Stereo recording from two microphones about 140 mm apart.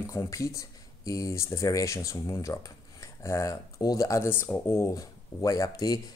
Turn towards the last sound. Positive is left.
turn(degrees=25)  # may be behind; listen again after turning